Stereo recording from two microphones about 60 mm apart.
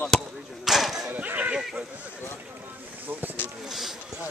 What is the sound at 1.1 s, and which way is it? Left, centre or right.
Speech, right.